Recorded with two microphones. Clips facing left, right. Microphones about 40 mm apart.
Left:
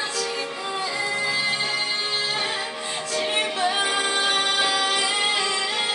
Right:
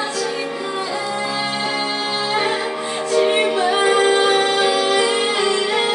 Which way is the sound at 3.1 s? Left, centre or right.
Centre.